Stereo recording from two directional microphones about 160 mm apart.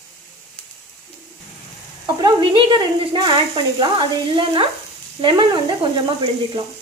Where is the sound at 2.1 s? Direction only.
30° right (ahead or behind).